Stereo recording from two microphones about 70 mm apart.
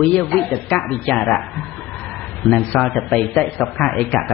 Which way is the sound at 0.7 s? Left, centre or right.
Centre.